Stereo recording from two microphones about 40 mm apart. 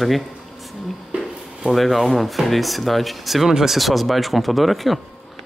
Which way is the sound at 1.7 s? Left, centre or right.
Centre.